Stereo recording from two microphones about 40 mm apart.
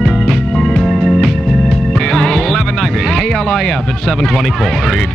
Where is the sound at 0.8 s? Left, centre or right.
Centre.